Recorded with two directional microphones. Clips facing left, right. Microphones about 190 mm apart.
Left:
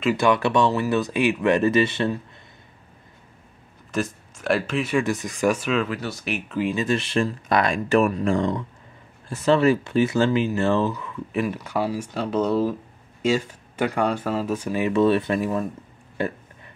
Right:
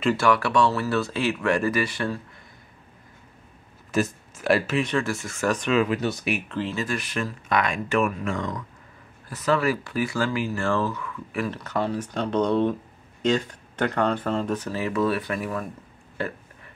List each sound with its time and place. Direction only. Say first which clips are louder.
0.2 s speech: left 3 dB; 20° left (ahead or behind)
3.9 s speech: right 2 dB; 5° right (ahead or behind)
4.9 s speech: left 3 dB; 20° left (ahead or behind)
5.9 s speech: right 4 dB; 20° right (ahead or behind)
6.5 s speech: left 5 dB; 15° left (ahead or behind)
14.9 s speech: left 6 dB; 25° left (ahead or behind)